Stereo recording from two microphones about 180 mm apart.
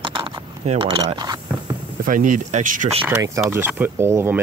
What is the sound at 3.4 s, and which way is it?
Speech, 10° right (ahead or behind).